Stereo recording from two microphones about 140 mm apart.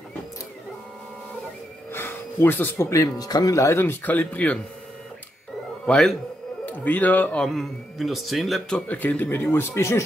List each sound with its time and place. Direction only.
1.9 s speech: 15° left (ahead or behind)
5.9 s speech: 5° left (ahead or behind)
7.4 s speech: centre (ahead or behind); by 10.0 s 20° left (ahead or behind)